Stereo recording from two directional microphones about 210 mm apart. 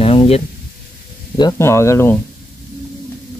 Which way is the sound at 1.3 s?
15° left (ahead or behind).